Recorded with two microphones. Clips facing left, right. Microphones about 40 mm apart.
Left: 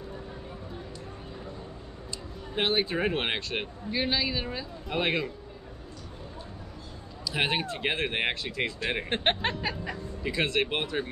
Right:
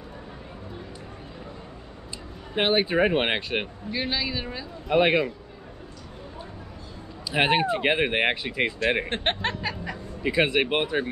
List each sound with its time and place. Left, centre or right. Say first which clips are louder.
2.5 s speech: right 5 dB; right
3.9 s music: even; centre
4.8 s speech: right 8 dB; centre
7.2 s speech: right 7 dB; right
9.1 s music: right 1 dB; centre
10.2 s speech: right 5 dB; centre